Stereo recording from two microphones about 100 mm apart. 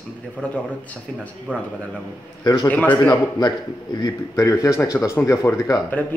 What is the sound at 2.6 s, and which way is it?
Speech, 15° left (ahead or behind).